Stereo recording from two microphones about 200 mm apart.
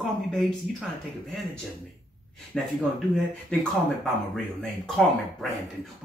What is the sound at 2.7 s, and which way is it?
Speech, centre (ahead or behind).